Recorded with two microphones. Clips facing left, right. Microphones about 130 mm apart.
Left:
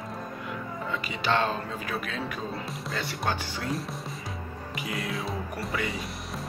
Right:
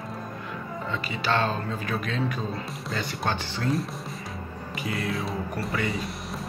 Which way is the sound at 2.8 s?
Centre (ahead or behind).